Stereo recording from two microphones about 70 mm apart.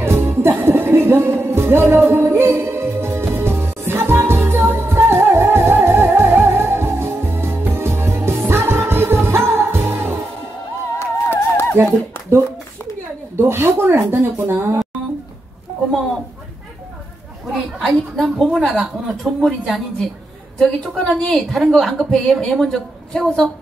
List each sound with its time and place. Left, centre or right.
0.0 s music: right
11.0 s music: left
13.4 s a woman's voice: right
17.5 s a woman's voice: centre